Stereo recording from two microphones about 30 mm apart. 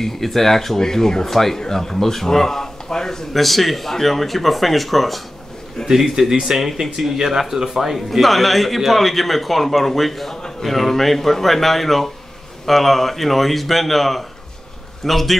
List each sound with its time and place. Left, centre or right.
0.0 s a man's voice: centre
3.3 s speech: centre
5.9 s speech: centre